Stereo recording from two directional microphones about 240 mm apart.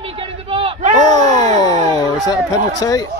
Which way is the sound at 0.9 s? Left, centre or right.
Centre.